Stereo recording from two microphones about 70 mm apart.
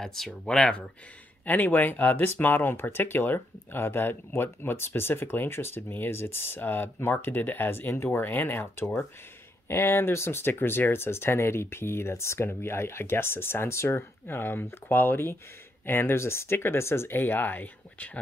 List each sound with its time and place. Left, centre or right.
0.0 s speech: centre
1.4 s speech: left